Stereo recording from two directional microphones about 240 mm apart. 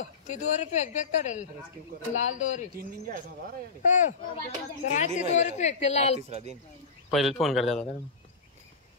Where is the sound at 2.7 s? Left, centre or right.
Right.